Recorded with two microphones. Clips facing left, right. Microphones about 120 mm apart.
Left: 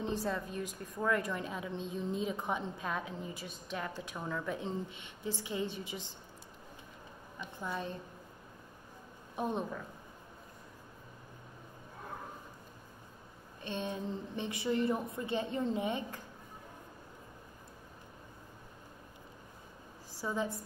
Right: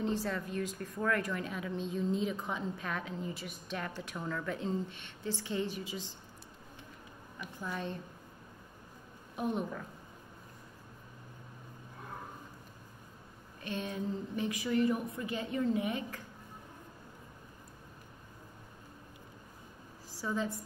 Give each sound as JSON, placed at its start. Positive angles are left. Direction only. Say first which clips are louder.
{"t": 0.0, "sound": "a woman's voice", "louder": "right 1 dB", "side_deg": 20}
{"t": 7.3, "sound": "a woman's voice", "louder": "left 1 dB", "side_deg": 20}
{"t": 9.3, "sound": "a woman's voice", "louder": "right 1 dB", "side_deg": 25}
{"t": 13.7, "sound": "a woman's voice", "louder": "right 1 dB", "side_deg": 25}
{"t": 20.2, "sound": "a woman's voice", "louder": "even", "side_deg": 15}